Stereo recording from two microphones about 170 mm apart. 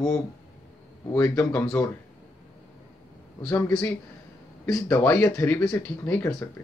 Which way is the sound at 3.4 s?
15° left (ahead or behind).